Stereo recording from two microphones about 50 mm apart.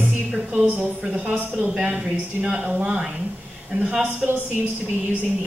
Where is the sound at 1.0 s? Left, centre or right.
Right.